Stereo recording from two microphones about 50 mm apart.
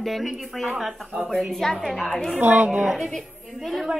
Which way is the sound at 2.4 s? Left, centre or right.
Right.